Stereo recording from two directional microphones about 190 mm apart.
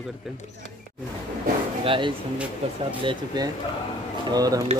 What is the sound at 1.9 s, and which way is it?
Speech, 25° right (ahead or behind).